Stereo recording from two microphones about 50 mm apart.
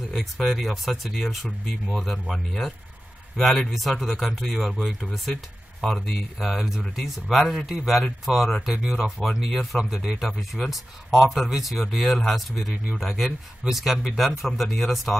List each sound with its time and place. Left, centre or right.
0.1 s speech: centre
8.7 s speech: centre